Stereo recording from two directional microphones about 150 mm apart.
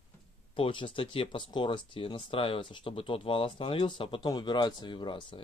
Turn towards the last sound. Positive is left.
turn(degrees=35)  # may be behind; listen again after turning